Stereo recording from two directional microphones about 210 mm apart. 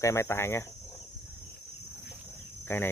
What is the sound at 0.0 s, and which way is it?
Speech, 15° left (ahead or behind).